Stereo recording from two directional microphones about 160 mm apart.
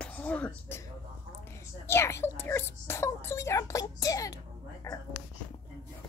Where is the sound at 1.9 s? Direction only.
15° left (ahead or behind).